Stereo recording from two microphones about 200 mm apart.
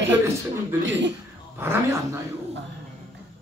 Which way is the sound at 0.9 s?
60° right (ahead or behind).